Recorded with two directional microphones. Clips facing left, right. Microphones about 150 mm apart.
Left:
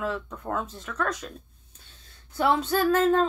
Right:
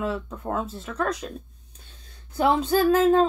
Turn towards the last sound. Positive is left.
turn(degrees=-10)  # may be behind; listen again after turning